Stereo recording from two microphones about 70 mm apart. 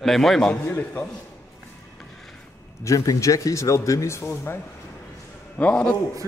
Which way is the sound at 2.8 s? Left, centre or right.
Left.